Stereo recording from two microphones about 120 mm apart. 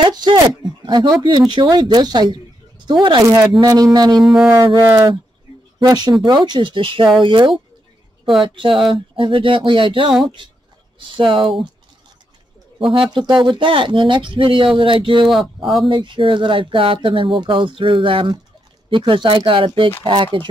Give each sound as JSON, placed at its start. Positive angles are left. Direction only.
{"t": 0.0, "sound": "speech", "side_deg": -40}
{"t": 4.2, "sound": "speech", "side_deg": 0}
{"t": 4.8, "sound": "speech", "side_deg": -30}
{"t": 12.9, "sound": "speech", "side_deg": -40}